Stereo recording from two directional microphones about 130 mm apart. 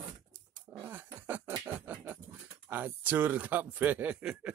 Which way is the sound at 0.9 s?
15° right (ahead or behind).